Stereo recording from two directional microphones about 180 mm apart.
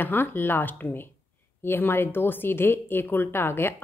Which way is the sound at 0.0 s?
10° left (ahead or behind).